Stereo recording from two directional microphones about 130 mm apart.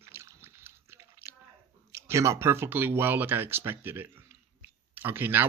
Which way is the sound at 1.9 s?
20° right (ahead or behind).